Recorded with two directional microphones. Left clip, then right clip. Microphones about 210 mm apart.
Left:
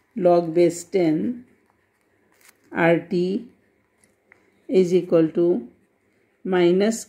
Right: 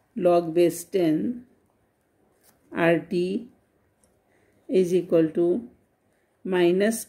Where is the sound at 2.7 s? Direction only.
20° left (ahead or behind).